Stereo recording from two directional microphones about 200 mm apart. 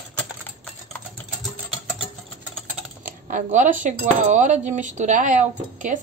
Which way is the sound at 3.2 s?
40° right (ahead or behind).